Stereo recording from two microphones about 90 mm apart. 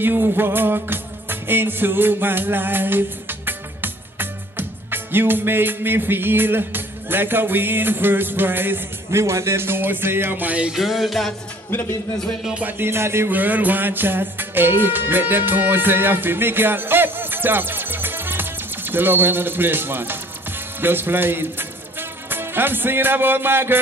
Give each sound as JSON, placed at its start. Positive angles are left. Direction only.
{"t": 0.0, "sound": "music", "side_deg": -25}
{"t": 10.8, "sound": "music", "side_deg": 0}
{"t": 11.7, "sound": "speech", "side_deg": 30}
{"t": 12.4, "sound": "music", "side_deg": -15}